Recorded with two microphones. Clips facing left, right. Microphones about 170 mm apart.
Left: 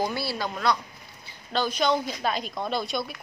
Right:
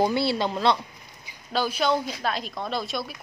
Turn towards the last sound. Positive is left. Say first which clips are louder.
# left 1 dB
turn(degrees=0)  # may be behind; listen again after turning